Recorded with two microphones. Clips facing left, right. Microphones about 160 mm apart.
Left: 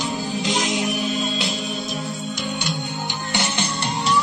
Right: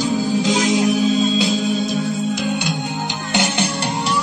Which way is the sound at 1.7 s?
90° right.